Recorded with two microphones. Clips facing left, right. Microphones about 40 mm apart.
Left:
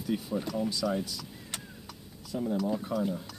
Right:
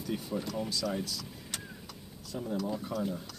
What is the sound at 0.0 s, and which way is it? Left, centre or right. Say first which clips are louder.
Speech: left 3 dB; centre.